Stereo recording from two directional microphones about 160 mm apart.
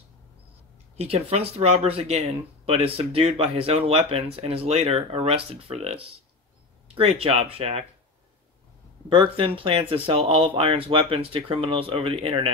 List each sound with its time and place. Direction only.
0.9 s speech: 40° right (ahead or behind)
7.0 s speech: 40° right (ahead or behind)
9.1 s speech: 30° right (ahead or behind)